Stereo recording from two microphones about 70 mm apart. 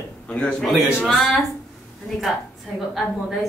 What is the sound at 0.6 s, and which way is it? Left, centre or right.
Speech, centre.